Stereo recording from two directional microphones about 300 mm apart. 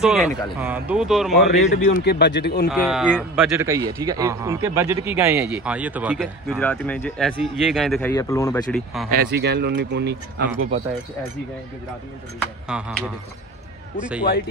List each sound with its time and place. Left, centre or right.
0.0 s a man's voice: centre
2.0 s speech: left
2.7 s a man's voice: centre
9.1 s speech: right
12.6 s a man's voice: centre